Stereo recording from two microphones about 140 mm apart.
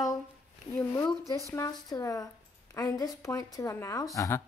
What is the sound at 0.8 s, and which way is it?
A woman's voice, 20° left (ahead or behind).